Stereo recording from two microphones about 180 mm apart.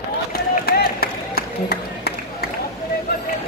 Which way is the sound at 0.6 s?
60° left (ahead or behind).